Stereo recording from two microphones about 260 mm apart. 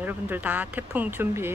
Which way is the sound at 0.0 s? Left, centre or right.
Centre.